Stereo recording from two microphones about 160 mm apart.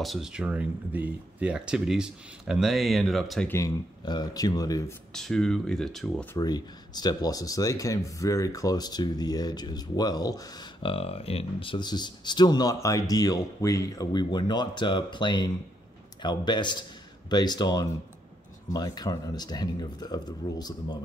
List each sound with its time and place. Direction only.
0.0 s speech: centre (ahead or behind)
3.4 s speech: 20° left (ahead or behind)
5.1 s speech: 5° left (ahead or behind)
6.3 s speech: 25° left (ahead or behind)
10.9 s speech: 35° left (ahead or behind)